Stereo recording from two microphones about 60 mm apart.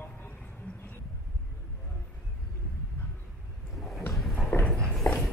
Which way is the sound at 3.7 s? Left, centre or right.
Centre.